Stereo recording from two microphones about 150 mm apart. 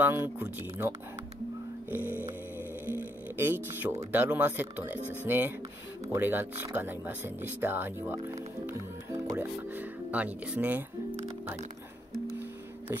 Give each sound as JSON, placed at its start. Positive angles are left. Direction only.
{"t": 0.0, "sound": "speech", "side_deg": -15}
{"t": 2.9, "sound": "a sound", "side_deg": -15}
{"t": 4.1, "sound": "speech", "side_deg": -10}